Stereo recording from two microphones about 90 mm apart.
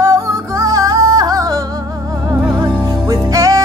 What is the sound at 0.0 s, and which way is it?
Music, 35° right (ahead or behind).